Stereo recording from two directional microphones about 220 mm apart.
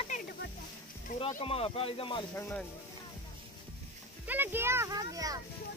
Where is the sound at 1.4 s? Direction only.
25° left (ahead or behind).